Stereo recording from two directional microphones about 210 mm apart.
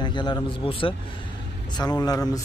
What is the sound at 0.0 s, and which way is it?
A man's voice, 20° left (ahead or behind).